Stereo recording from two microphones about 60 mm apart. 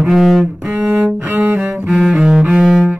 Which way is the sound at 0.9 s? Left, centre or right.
Right.